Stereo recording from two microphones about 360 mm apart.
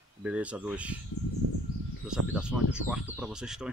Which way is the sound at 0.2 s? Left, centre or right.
Centre.